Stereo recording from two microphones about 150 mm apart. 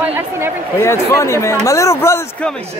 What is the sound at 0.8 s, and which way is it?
Speech, 20° left (ahead or behind).